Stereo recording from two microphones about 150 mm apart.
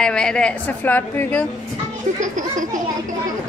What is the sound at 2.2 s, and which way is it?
Speech, 55° right (ahead or behind).